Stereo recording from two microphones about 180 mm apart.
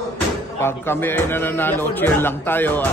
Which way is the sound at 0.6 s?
10° left (ahead or behind).